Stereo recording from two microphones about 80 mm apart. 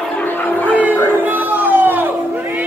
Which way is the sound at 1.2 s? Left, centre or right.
Right.